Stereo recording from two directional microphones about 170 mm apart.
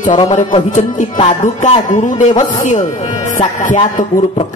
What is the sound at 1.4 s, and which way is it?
Music, 45° left (ahead or behind).